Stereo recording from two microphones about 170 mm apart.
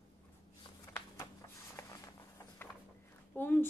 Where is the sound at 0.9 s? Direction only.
15° left (ahead or behind).